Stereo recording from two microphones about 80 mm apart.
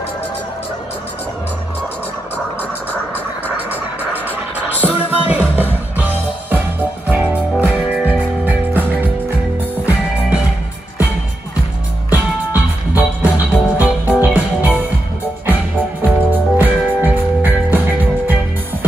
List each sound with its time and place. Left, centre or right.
4.1 s music: right
12.1 s music: right